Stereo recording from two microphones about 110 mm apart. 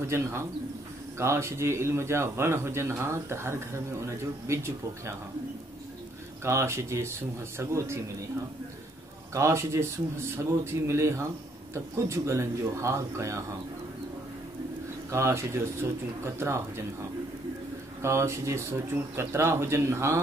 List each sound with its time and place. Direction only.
0.1 s speech: 25° right (ahead or behind)
6.4 s speech: 25° right (ahead or behind)
9.3 s speech: 25° right (ahead or behind)
15.0 s speech: 25° right (ahead or behind)
18.0 s speech: 25° right (ahead or behind)